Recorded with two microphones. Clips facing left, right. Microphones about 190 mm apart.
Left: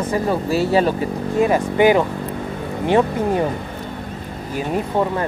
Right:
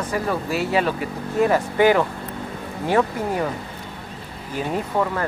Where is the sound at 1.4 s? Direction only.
20° left (ahead or behind).